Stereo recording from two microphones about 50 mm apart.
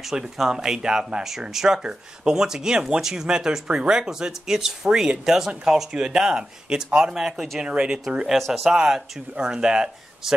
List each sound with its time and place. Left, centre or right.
0.4 s speech: centre
8.4 s speech: centre
8.6 s speech: centre